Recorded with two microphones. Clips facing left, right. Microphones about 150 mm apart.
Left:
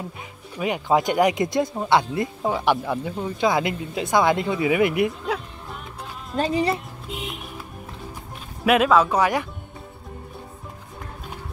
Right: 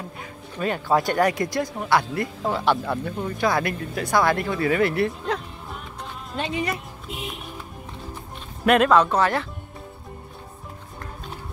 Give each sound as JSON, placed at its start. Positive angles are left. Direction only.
{"t": 0.6, "sound": "speech", "side_deg": 15}
{"t": 6.3, "sound": "speech", "side_deg": 35}
{"t": 8.6, "sound": "speech", "side_deg": 5}